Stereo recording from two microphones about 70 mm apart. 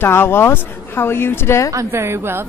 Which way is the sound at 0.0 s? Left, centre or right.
Left.